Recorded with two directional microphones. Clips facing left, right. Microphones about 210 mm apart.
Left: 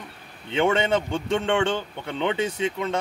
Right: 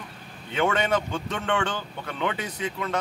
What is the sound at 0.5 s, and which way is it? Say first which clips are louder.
Speech: left 3 dB; 25° left (ahead or behind).